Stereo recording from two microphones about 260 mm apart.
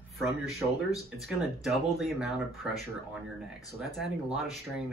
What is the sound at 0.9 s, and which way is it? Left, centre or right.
Speech, centre.